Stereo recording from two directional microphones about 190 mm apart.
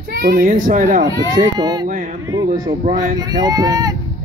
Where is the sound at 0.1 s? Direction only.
50° right (ahead or behind).